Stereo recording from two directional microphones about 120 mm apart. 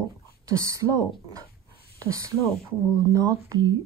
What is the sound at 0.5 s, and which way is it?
Speech, 25° right (ahead or behind).